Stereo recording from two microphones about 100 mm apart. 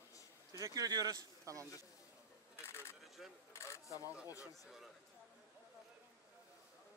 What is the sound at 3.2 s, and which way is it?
Speech, centre (ahead or behind).